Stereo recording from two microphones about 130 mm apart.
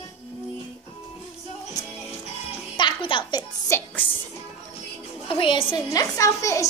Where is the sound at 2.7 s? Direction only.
40° left (ahead or behind).